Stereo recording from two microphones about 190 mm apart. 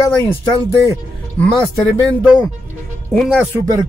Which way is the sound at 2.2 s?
5° right (ahead or behind).